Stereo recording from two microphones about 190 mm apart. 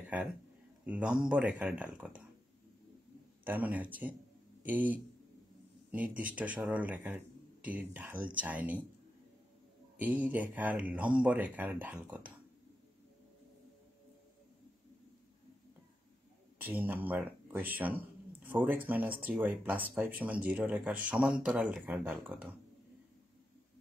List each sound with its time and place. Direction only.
0.8 s speech: 5° right (ahead or behind)
3.4 s speech: 10° right (ahead or behind)
9.9 s speech: 10° right (ahead or behind)
16.6 s speech: 10° right (ahead or behind)